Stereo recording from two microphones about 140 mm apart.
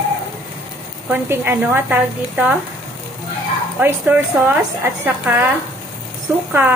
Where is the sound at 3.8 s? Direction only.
15° right (ahead or behind).